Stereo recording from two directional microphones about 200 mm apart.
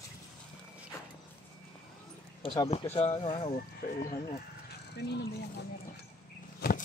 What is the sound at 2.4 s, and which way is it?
Speech, 25° left (ahead or behind).